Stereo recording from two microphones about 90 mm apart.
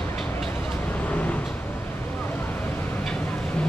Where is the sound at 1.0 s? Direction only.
15° left (ahead or behind).